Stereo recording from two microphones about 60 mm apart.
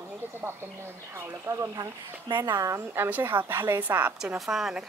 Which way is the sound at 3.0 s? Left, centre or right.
Right.